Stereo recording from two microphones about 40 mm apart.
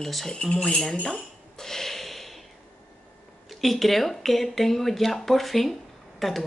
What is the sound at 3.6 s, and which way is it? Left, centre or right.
A woman's voice, centre.